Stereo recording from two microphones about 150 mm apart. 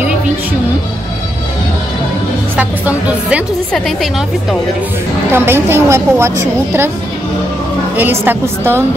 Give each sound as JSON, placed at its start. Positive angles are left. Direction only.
{"t": 2.5, "sound": "a woman's voice", "side_deg": -10}
{"t": 5.3, "sound": "a woman's voice", "side_deg": -15}
{"t": 7.9, "sound": "a woman's voice", "side_deg": -15}